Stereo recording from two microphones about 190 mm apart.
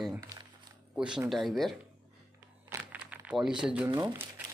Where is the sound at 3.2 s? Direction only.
5° right (ahead or behind).